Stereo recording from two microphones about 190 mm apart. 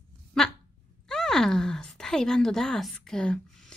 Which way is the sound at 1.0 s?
5° left (ahead or behind).